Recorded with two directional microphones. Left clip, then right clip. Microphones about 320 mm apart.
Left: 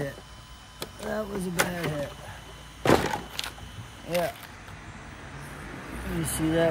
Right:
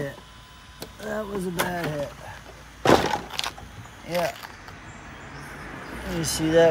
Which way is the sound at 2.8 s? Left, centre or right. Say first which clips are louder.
Right 4 dB; right.